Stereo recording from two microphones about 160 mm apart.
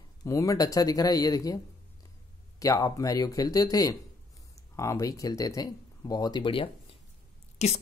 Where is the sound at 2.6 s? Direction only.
20° left (ahead or behind).